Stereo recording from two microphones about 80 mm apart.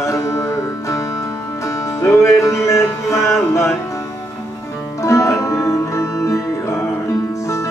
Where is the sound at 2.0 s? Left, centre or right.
Left.